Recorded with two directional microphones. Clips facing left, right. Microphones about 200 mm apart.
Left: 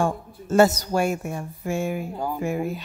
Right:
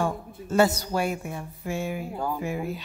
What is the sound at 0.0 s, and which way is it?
Speech, 45° left (ahead or behind).